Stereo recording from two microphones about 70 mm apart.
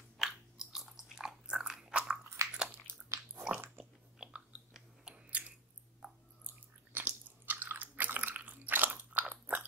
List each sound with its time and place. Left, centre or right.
0.2 s biting: centre
2.4 s biting: right
4.2 s chewing: centre
6.9 s biting: right